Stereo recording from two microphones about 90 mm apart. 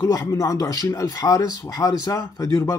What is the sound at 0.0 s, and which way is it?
Speech, 30° left (ahead or behind).